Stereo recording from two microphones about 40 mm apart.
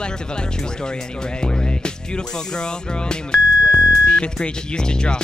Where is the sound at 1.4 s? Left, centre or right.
Left.